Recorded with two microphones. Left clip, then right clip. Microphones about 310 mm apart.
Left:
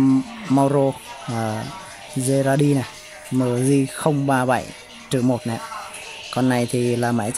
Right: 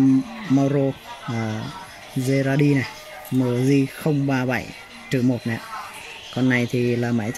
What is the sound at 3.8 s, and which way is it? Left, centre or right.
Speech, left.